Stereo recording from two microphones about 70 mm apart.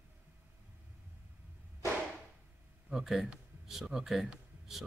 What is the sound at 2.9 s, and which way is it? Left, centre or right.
Speech, centre.